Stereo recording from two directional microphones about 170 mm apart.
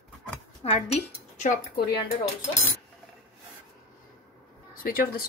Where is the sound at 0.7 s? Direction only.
40° left (ahead or behind).